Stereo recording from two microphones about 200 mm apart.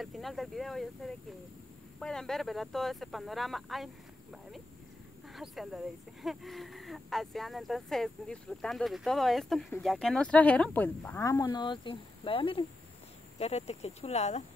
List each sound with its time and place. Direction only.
0.0 s speech: centre (ahead or behind); by 14.4 s 35° left (ahead or behind)